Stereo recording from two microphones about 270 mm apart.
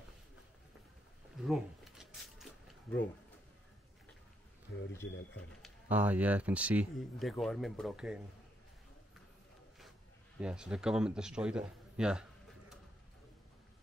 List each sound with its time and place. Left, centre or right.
1.3 s a sound: centre
5.0 s speech: left
5.6 s speech: centre
10.4 s a man's voice: centre